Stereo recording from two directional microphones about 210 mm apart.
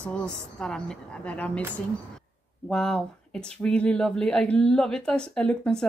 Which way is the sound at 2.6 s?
Centre (ahead or behind).